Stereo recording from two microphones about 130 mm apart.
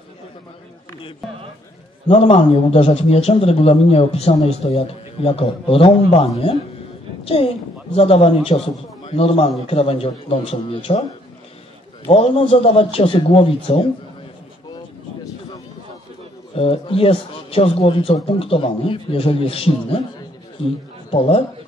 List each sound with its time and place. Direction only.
2.0 s a man's voice: 50° left (ahead or behind)
7.9 s a man's voice: 50° left (ahead or behind)
12.1 s a man's voice: 45° left (ahead or behind)
16.5 s a man's voice: 45° left (ahead or behind)
21.1 s a man's voice: 45° left (ahead or behind)